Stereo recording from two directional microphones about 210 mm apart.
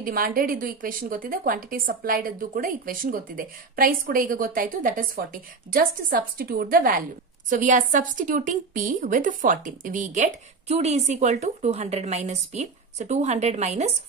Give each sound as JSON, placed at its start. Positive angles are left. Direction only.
{"t": 0.0, "sound": "a woman's voice", "side_deg": -45}